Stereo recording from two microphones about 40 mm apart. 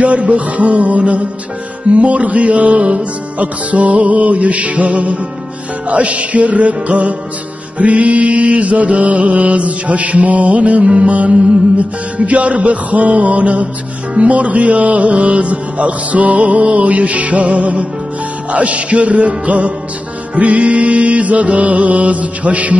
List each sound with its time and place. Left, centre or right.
0.5 s music: right
10.6 s music: right
12.3 s music: right